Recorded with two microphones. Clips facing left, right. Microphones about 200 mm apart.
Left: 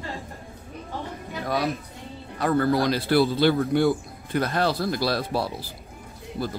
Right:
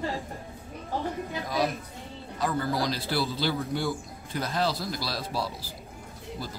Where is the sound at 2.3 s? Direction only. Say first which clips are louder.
Left 7 dB; 60° left (ahead or behind).